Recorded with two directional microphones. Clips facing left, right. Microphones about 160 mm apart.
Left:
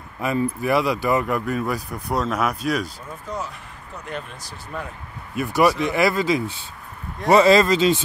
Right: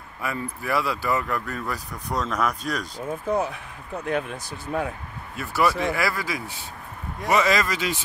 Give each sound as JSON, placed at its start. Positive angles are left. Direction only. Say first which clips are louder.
{"t": 0.2, "sound": "speech", "louder": "left 8 dB", "side_deg": 20}
{"t": 3.3, "sound": "speech", "louder": "right 6 dB", "side_deg": -55}
{"t": 5.3, "sound": "speech", "louder": "left 5 dB", "side_deg": 15}